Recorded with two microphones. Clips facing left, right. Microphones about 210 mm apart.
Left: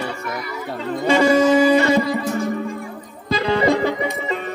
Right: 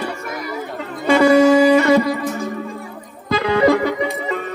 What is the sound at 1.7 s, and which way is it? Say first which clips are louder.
Music: right 3 dB; 25° left (ahead or behind).